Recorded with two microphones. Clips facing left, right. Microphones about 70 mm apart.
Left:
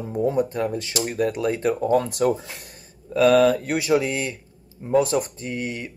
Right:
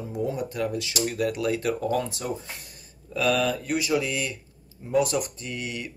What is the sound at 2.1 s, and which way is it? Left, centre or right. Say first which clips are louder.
Speech: left 10 dB; left.